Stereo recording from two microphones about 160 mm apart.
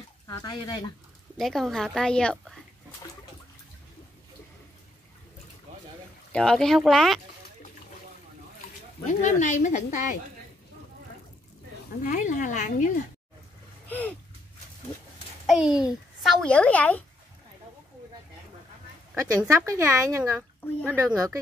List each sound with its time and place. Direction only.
0.3 s speech: 25° left (ahead or behind)
1.4 s a child's voice: centre (ahead or behind)
6.3 s a child's voice: 5° left (ahead or behind)
9.0 s speech: 50° left (ahead or behind)
12.0 s speech: 55° left (ahead or behind)
13.8 s a sound: 10° left (ahead or behind)
15.4 s a child's voice: 5° right (ahead or behind)
19.1 s a woman's voice: 20° right (ahead or behind)